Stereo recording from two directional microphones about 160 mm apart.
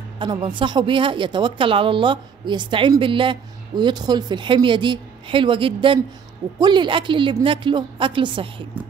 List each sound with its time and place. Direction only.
0.2 s a woman's voice: 30° right (ahead or behind)